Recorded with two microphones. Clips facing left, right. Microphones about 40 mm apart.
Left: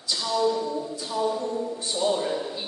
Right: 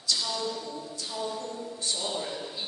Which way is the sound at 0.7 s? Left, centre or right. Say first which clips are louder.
Left 8 dB; left.